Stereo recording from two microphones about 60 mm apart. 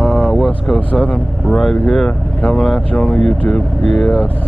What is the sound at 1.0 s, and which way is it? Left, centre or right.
Speech, centre.